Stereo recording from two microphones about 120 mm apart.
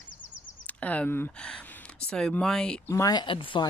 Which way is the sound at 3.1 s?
45° left (ahead or behind).